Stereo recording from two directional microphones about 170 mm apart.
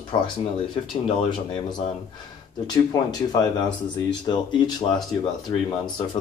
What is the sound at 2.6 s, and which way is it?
Speech, 20° left (ahead or behind).